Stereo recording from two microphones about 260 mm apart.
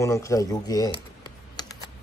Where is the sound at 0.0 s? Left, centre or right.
Centre.